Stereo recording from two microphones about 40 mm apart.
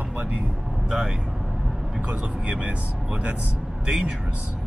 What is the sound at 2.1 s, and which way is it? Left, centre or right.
Speech, right.